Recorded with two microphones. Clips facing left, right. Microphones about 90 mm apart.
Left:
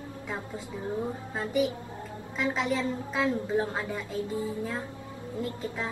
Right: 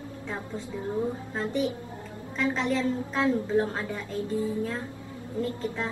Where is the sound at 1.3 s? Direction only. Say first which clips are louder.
Left 4 dB; 10° left (ahead or behind).